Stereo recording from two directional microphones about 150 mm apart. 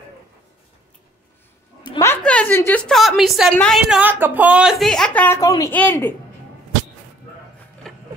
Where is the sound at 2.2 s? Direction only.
10° left (ahead or behind).